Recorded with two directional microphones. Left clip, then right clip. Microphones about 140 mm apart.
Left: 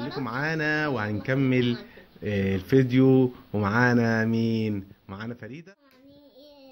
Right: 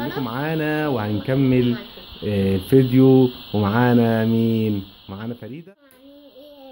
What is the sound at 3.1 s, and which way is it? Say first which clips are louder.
A child's voice: right 6 dB; 5° right (ahead or behind).